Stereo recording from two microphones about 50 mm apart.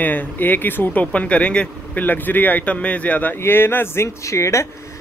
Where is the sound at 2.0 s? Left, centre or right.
Left.